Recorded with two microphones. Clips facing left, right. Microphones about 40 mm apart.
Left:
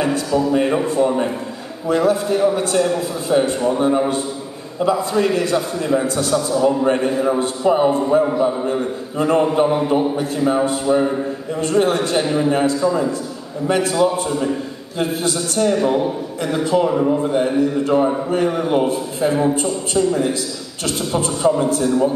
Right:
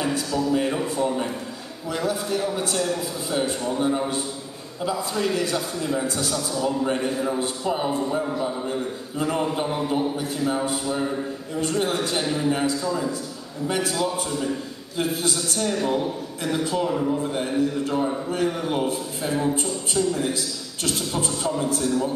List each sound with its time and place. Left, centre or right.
0.3 s a man's voice: left
21.4 s a man's voice: centre